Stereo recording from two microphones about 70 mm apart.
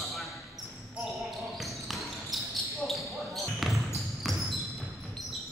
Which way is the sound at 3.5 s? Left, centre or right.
Centre.